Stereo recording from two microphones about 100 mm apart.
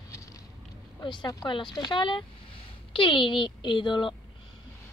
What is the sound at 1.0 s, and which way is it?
Speech, 50° left (ahead or behind).